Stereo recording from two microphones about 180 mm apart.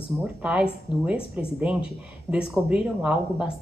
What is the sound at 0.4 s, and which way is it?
Speech, 5° right (ahead or behind).